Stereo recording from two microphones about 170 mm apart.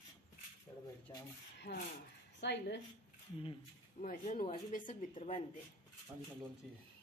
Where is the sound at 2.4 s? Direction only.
85° left.